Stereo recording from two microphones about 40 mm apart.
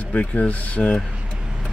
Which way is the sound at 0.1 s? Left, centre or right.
Left.